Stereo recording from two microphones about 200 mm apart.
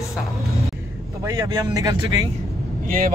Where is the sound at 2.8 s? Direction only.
45° right (ahead or behind).